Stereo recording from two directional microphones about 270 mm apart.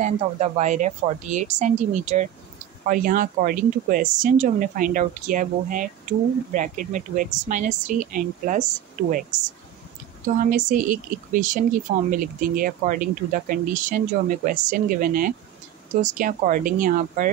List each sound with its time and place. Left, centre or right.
0.0 s speech: right
10.2 s speech: right